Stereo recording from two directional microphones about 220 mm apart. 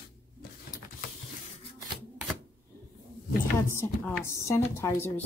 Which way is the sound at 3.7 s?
10° left (ahead or behind).